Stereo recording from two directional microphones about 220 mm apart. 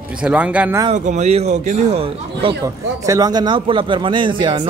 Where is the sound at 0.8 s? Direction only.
35° right (ahead or behind).